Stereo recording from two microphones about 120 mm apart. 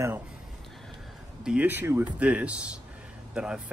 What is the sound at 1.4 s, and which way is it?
Speech, 10° right (ahead or behind).